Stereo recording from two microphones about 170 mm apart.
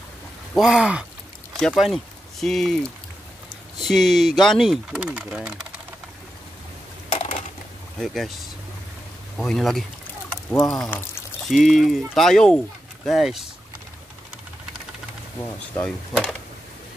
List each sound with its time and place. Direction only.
0.6 s speech: 5° right (ahead or behind)
7.1 s crushing: 40° left (ahead or behind)
8.0 s speech: centre (ahead or behind)
9.4 s speech: centre (ahead or behind)
15.7 s speech: 5° left (ahead or behind)